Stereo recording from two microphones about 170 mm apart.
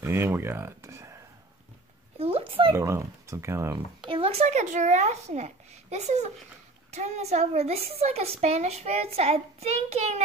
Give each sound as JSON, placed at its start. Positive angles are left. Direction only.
{"t": 0.0, "sound": "speech", "side_deg": -15}
{"t": 2.1, "sound": "a sound", "side_deg": -35}
{"t": 2.7, "sound": "speech", "side_deg": -15}
{"t": 4.1, "sound": "a woman's voice", "side_deg": -35}